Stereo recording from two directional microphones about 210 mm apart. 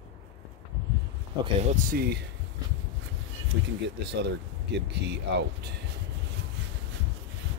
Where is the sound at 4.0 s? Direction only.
55° right (ahead or behind).